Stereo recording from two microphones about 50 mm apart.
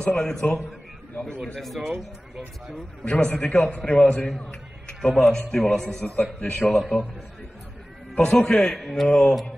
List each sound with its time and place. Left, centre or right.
0.0 s a man's voice: left
1.5 s music: centre
2.7 s a man's voice: centre
6.0 s a man's voice: left
6.8 s a man's voice: centre
8.1 s a man's voice: centre
8.7 s music: centre